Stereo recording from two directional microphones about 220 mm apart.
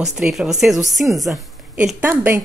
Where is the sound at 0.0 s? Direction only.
Centre (ahead or behind).